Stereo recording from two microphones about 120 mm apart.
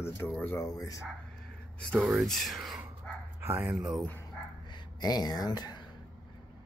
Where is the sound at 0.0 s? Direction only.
20° left (ahead or behind).